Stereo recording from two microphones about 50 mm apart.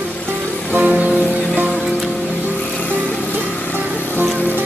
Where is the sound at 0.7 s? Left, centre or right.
Right.